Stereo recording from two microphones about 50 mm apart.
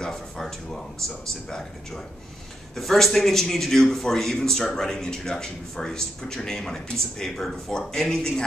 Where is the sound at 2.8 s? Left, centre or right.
Centre.